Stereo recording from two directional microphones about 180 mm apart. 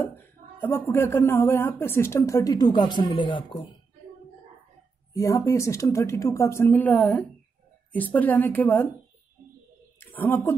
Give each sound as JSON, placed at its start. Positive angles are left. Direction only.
{"t": 0.0, "sound": "a woman's voice", "side_deg": 15}
{"t": 5.1, "sound": "a woman's voice", "side_deg": 15}
{"t": 9.9, "sound": "a sound", "side_deg": 10}